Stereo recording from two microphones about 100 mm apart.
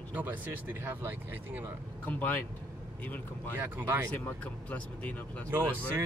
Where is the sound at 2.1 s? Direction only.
20° left (ahead or behind).